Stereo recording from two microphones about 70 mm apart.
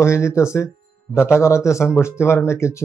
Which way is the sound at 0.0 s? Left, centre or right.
Left.